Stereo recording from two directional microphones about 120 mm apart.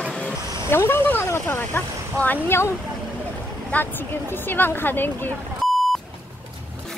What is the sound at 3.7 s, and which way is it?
A woman's voice, 10° left (ahead or behind).